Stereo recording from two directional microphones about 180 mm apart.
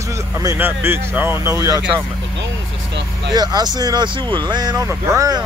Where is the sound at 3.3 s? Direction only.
25° right (ahead or behind).